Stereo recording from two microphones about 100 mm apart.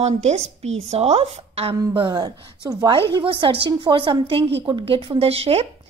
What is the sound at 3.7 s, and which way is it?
A woman's voice, 50° right (ahead or behind).